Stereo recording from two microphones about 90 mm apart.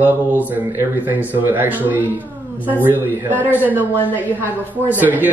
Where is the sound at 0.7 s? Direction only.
25° right (ahead or behind).